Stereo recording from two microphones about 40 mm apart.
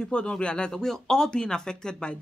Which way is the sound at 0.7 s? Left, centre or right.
Centre.